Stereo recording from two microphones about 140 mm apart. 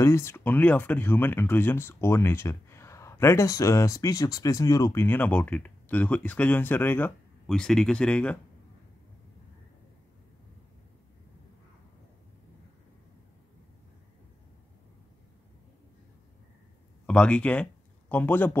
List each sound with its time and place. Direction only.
0.0 s speech: 20° left (ahead or behind)
7.4 s speech: 5° left (ahead or behind)
17.0 s a man's voice: 10° left (ahead or behind)